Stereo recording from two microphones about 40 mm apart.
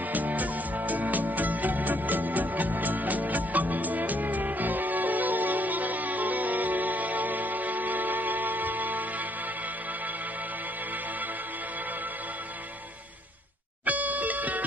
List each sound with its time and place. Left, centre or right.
0.1 s music: right
13.8 s music: right